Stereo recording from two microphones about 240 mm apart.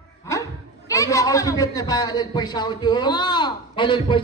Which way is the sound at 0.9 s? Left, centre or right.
Centre.